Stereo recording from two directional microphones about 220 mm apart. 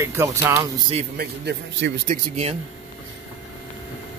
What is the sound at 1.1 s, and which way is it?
Speech, 50° right (ahead or behind).